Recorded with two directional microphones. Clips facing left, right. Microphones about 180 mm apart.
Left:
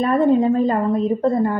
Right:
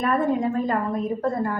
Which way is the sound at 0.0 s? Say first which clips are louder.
Left 6 dB; 25° left (ahead or behind).